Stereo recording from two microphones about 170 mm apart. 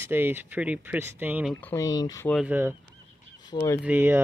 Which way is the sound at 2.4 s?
10° right (ahead or behind).